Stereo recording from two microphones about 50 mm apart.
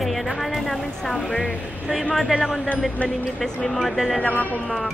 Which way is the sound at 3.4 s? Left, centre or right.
Centre.